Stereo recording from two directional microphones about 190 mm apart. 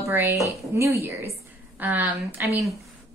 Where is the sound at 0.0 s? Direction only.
15° right (ahead or behind).